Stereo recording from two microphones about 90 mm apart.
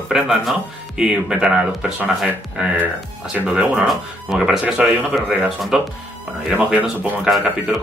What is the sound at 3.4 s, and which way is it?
Speech, 15° right (ahead or behind).